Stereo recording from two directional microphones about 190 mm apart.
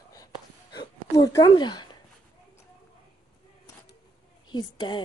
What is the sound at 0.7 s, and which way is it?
Speech, 20° left (ahead or behind).